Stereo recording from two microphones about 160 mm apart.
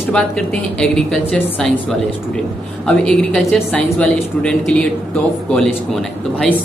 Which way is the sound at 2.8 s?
5° left (ahead or behind).